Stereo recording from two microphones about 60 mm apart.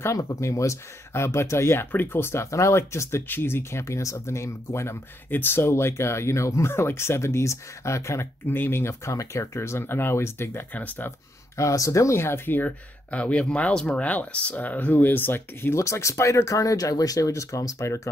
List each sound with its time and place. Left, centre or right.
0.2 s speech: left
3.3 s speech: left
5.3 s speech: left
8.5 s speech: left
9.1 s speech: left
10.7 s speech: left
11.1 s speech: left
15.8 s speech: left